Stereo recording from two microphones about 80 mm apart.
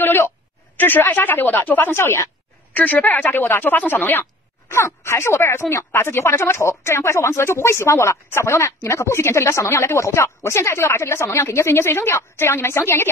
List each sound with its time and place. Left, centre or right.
0.0 s a sound: left
0.7 s speech: left
2.7 s speech: left